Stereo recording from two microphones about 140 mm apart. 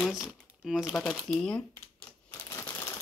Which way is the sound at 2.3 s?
20° left (ahead or behind).